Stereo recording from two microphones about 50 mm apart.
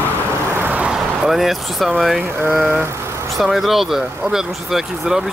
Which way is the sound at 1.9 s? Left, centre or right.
Centre.